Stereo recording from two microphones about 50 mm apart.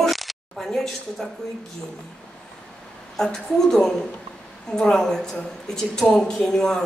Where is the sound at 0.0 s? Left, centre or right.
Centre.